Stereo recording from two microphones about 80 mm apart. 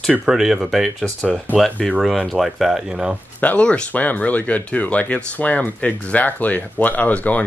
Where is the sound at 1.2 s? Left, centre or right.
Centre.